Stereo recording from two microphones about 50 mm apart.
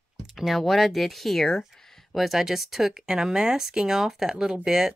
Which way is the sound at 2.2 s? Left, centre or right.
Centre.